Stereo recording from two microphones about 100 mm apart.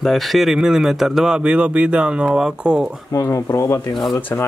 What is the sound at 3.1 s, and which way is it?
Speech, 35° left (ahead or behind).